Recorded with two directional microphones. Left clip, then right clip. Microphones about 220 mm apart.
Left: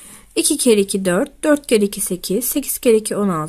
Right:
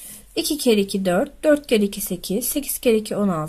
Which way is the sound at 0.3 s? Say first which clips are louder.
Left 4 dB; 25° left (ahead or behind).